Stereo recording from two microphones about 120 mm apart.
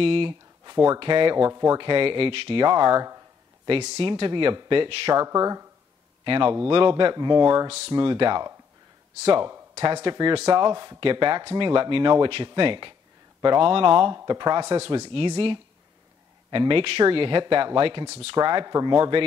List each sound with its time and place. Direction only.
0.0 s a sound: 50° right (ahead or behind)
0.9 s speech: 45° right (ahead or behind)
1.5 s speech: 30° right (ahead or behind)
1.8 s speech: 45° right (ahead or behind)
4.0 s speech: 45° right (ahead or behind)
5.1 s speech: 30° right (ahead or behind)
6.2 s speech: 45° right (ahead or behind)
11.0 s speech: 45° right (ahead or behind)
14.1 s speech: 30° right (ahead or behind)
14.7 s speech: 45° right (ahead or behind)